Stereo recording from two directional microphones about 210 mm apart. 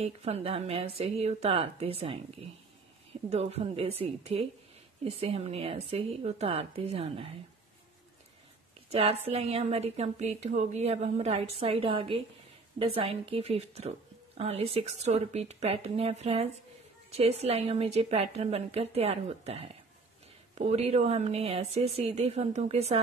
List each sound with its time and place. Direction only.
0.0 s speech: 30° right (ahead or behind)
3.3 s speech: 30° right (ahead or behind)
8.9 s speech: 30° right (ahead or behind)